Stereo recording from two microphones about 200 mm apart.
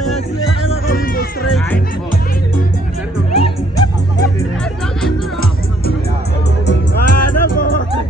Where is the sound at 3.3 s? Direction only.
25° left (ahead or behind).